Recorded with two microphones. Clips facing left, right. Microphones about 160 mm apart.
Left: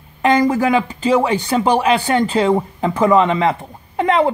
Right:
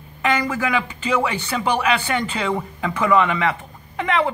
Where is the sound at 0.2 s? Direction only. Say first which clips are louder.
Left 7 dB; 40° left (ahead or behind).